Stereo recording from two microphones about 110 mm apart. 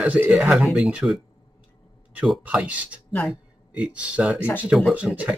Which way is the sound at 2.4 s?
10° right (ahead or behind).